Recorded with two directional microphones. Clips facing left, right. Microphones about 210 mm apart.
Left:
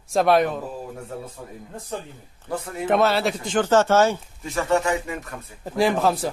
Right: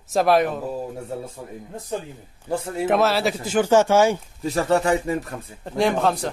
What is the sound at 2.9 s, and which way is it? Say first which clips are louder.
Speech: even; centre (ahead or behind).